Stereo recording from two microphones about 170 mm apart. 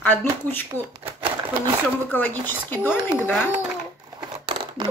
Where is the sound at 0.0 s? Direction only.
10° left (ahead or behind).